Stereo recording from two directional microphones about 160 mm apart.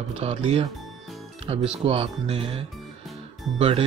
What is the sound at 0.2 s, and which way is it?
Speech, 40° right (ahead or behind).